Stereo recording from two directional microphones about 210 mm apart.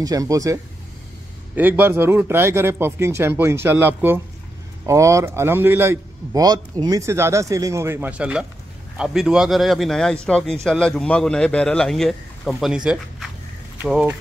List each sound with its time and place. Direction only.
0.0 s a man's voice: 15° right (ahead or behind)